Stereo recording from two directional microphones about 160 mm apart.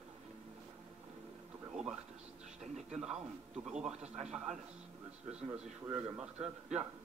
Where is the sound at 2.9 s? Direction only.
5° right (ahead or behind).